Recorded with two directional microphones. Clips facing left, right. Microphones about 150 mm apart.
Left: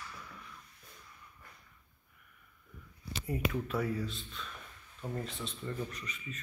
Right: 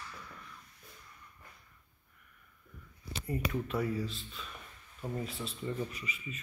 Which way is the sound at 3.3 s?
Centre (ahead or behind).